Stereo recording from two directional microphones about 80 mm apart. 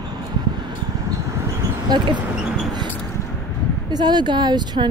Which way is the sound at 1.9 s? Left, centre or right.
Right.